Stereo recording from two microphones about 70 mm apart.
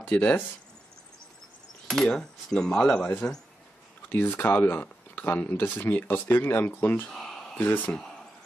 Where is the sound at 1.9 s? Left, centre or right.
Centre.